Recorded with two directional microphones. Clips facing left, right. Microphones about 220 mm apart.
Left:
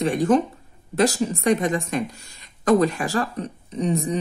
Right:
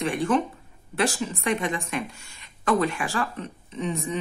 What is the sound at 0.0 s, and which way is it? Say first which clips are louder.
Speech: left 5 dB; 35° left (ahead or behind).